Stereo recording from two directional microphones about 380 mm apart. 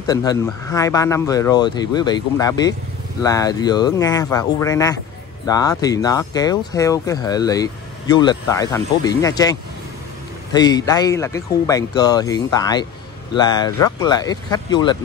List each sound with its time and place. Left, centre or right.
0.0 s speech: centre